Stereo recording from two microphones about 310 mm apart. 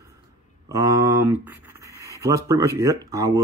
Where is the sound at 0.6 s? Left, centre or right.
Centre.